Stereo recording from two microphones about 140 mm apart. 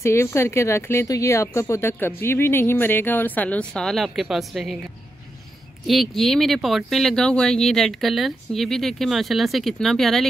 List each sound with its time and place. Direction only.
0.0 s speech: 20° left (ahead or behind); by 4.7 s centre (ahead or behind)
5.9 s speech: centre (ahead or behind)